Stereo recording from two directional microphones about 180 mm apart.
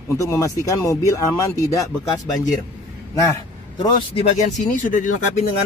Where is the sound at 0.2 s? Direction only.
15° left (ahead or behind).